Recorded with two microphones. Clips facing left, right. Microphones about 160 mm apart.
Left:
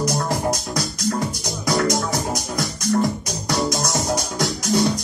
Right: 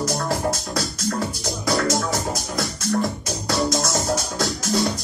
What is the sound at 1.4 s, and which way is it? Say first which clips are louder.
Music: left 1 dB; 20° left (ahead or behind).